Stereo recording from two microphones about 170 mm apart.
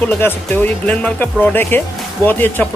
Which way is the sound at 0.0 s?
10° left (ahead or behind).